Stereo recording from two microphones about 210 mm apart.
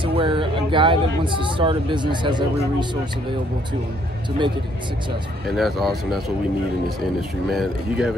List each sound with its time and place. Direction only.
0.0 s speech: 25° right (ahead or behind)
5.6 s speech: centre (ahead or behind)